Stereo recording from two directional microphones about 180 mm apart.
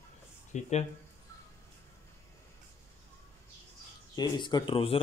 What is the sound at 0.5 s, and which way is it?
Speech, 40° left (ahead or behind).